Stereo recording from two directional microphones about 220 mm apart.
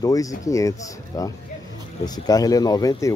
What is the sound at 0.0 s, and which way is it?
Speech, 15° left (ahead or behind).